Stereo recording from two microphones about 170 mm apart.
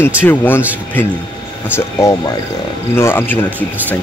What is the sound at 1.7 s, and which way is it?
Speech, 15° left (ahead or behind).